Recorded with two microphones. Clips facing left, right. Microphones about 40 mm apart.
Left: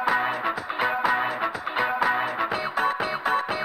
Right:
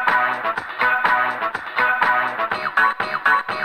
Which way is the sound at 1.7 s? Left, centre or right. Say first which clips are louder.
Right 7 dB; right.